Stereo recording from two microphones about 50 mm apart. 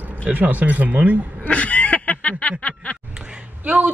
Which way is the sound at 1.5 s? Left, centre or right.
Left.